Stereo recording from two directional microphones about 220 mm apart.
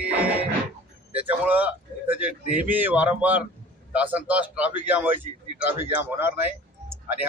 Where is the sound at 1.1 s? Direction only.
5° right (ahead or behind).